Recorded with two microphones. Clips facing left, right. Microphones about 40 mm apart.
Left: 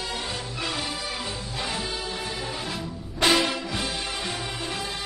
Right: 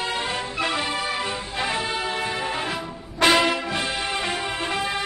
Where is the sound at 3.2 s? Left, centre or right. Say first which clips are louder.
Right 4 dB; right.